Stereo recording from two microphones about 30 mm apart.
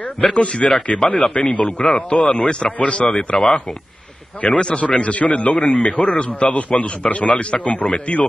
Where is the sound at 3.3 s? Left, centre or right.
Left.